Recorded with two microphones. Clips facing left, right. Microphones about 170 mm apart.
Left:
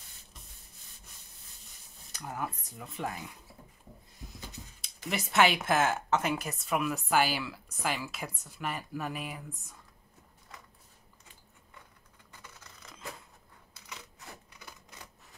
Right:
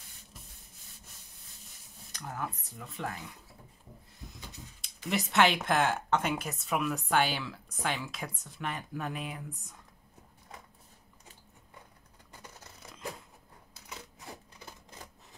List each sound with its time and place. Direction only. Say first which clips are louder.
2.1 s speech: left 1 dB; 10° left (ahead or behind)
4.8 s speech: right 3 dB; 5° left (ahead or behind)
12.3 s scissors: right 3 dB; 35° right (ahead or behind)
13.8 s rub: right 2 dB; 30° right (ahead or behind)